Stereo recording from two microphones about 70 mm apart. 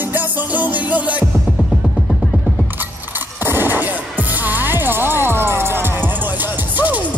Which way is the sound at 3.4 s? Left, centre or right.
Right.